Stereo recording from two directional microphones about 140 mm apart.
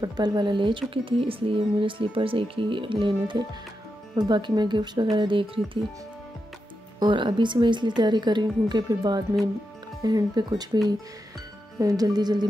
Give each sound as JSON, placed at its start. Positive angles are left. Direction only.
{"t": 0.0, "sound": "speech", "side_deg": -30}
{"t": 7.0, "sound": "speech", "side_deg": -35}
{"t": 11.8, "sound": "speech", "side_deg": -25}